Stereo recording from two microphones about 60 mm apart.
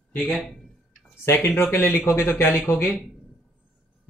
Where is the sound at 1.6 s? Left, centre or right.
Left.